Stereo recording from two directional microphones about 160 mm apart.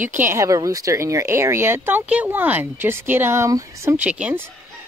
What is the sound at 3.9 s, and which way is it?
Speech, 10° right (ahead or behind).